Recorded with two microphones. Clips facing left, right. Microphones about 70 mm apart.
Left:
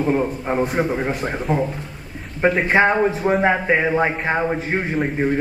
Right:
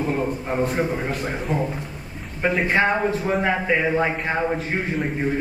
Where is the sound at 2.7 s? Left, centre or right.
Centre.